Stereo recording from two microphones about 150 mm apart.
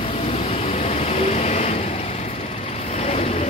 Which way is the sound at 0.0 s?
40° left (ahead or behind).